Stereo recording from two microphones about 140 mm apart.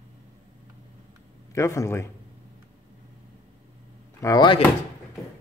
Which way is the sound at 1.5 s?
20° left (ahead or behind).